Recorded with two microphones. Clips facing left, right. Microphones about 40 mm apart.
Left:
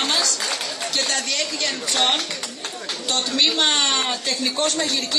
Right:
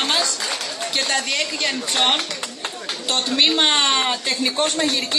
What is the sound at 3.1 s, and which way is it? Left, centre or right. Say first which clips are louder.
A woman's voice: right 2 dB; right.